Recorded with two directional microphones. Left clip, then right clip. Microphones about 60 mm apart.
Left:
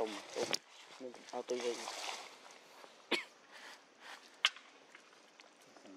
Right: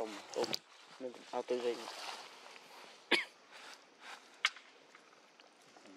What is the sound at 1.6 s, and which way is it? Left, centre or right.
Speech, left.